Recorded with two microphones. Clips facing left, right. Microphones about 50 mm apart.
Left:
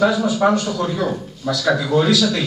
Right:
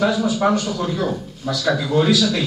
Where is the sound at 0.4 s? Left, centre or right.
Centre.